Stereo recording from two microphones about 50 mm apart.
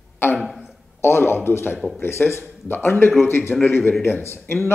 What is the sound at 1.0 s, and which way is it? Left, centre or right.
A man's voice, left.